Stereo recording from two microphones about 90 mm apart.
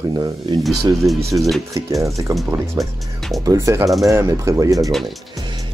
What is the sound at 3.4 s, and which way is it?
Speech, 45° right (ahead or behind).